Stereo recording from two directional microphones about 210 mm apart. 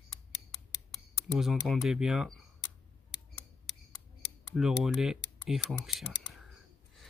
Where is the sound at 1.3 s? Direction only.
Centre (ahead or behind).